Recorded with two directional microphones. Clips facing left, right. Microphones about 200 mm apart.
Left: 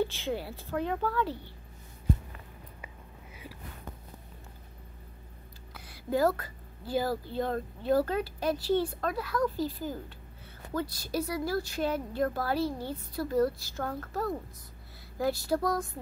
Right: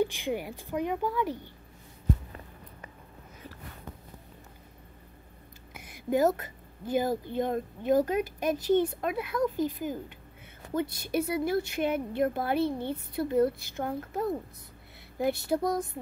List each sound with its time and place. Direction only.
0.0 s a woman's voice: 15° right (ahead or behind)
5.7 s a woman's voice: 20° right (ahead or behind)